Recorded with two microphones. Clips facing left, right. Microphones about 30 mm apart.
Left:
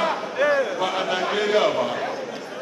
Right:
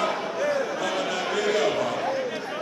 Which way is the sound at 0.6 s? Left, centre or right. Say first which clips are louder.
Left 3 dB; left.